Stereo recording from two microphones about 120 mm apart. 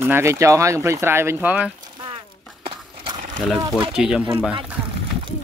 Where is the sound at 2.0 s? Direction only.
45° right (ahead or behind).